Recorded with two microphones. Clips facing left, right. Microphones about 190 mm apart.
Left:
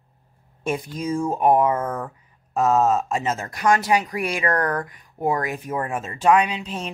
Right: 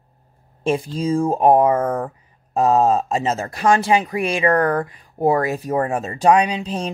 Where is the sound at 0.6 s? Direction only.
30° right (ahead or behind).